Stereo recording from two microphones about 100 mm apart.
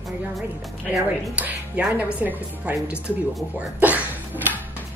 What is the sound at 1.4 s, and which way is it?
A woman's voice, 15° right (ahead or behind).